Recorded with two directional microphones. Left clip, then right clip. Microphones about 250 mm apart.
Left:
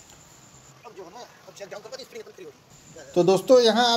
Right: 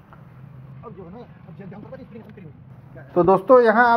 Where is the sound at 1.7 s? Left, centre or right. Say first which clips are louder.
Even; left.